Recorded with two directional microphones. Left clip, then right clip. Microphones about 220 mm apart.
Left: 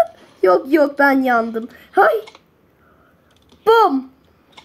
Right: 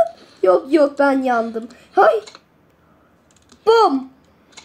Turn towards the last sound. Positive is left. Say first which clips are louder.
# left 1 dB
turn(degrees=25)  # may be behind; listen again after turning